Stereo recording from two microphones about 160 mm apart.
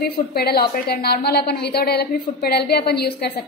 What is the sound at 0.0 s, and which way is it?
A woman's voice, 75° left (ahead or behind).